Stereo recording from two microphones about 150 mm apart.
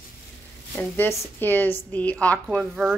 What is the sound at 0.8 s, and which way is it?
Speech, 15° left (ahead or behind).